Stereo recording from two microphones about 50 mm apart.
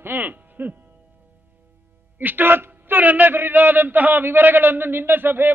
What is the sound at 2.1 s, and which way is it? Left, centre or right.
A man's voice, right.